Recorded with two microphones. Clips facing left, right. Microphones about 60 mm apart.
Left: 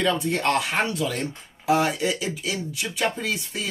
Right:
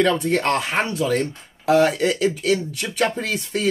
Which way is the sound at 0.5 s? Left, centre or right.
Right.